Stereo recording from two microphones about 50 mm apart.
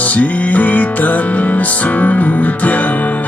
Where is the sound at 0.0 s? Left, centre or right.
Left.